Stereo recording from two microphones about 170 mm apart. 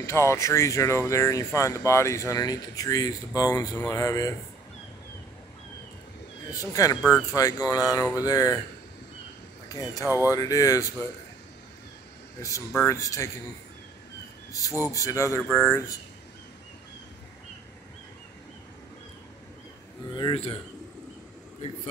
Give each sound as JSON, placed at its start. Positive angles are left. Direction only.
{"t": 0.0, "sound": "speech", "side_deg": 15}
{"t": 3.7, "sound": "speech", "side_deg": 10}
{"t": 4.0, "sound": "speech", "side_deg": 20}
{"t": 6.5, "sound": "speech", "side_deg": 20}
{"t": 7.0, "sound": "speech", "side_deg": 0}
{"t": 7.3, "sound": "speech", "side_deg": 20}
{"t": 9.7, "sound": "speech", "side_deg": 20}
{"t": 12.4, "sound": "speech", "side_deg": 20}
{"t": 14.5, "sound": "speech", "side_deg": 20}
{"t": 20.2, "sound": "speech", "side_deg": 30}